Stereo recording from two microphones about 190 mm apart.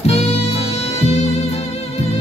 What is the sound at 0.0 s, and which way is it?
Music, 35° left (ahead or behind).